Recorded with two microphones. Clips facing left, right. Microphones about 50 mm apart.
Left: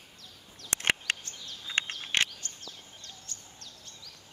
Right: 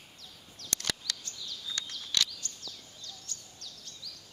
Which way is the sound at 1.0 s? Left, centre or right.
Left.